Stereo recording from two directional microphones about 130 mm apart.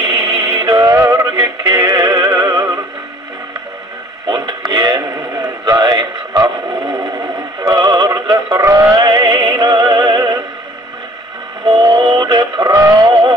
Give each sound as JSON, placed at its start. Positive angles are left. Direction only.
{"t": 0.0, "sound": "synthetic singing", "side_deg": -30}
{"t": 4.3, "sound": "synthetic singing", "side_deg": -30}
{"t": 7.6, "sound": "music", "side_deg": -30}
{"t": 11.6, "sound": "music", "side_deg": -35}